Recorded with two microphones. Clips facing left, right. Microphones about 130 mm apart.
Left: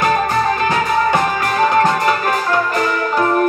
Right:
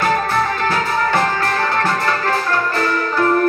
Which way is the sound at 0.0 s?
15° left (ahead or behind).